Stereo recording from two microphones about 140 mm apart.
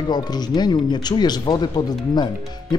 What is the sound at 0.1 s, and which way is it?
Speech, 30° left (ahead or behind).